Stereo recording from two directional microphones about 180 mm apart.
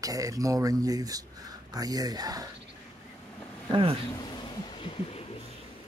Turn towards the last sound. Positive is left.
turn(degrees=35)  # may be behind; listen again after turning